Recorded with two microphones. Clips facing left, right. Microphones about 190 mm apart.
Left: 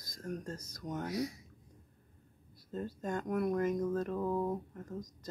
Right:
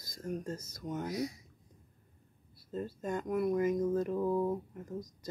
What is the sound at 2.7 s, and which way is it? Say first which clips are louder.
Speech: right 1 dB; 5° right (ahead or behind).